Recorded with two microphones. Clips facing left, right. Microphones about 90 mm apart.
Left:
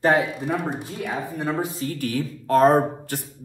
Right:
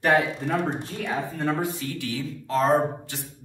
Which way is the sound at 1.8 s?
50° left (ahead or behind).